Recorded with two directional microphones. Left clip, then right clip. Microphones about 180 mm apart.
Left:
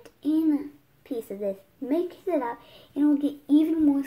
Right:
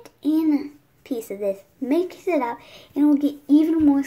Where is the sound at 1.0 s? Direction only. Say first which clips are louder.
Right 4 dB; 20° right (ahead or behind).